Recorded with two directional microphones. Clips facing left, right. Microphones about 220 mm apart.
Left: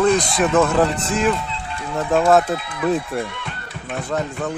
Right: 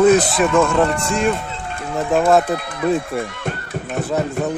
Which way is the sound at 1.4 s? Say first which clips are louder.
Right 1 dB; 50° right (ahead or behind).